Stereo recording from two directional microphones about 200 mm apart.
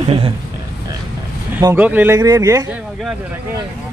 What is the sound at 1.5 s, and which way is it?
Speech, 15° right (ahead or behind).